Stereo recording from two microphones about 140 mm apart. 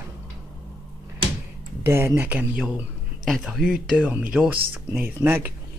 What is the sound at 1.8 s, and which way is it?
Speech, 20° right (ahead or behind).